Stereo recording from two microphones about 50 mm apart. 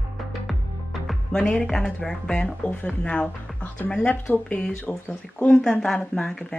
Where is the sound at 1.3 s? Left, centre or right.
Centre.